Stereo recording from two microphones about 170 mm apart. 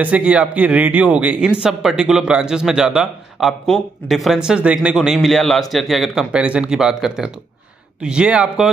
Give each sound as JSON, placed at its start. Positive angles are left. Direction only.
{"t": 0.0, "sound": "a man's voice", "side_deg": -5}